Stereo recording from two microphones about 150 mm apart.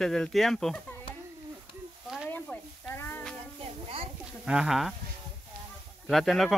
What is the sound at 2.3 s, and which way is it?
Sizzle, 10° left (ahead or behind).